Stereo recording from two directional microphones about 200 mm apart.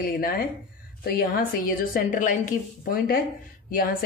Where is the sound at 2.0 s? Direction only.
40° left (ahead or behind).